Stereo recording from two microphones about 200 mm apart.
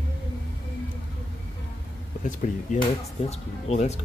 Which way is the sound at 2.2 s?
40° left (ahead or behind).